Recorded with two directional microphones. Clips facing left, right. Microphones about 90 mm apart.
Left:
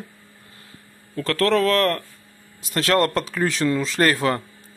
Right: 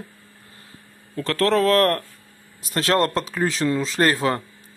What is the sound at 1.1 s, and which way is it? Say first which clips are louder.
Speech: even; 30° right (ahead or behind).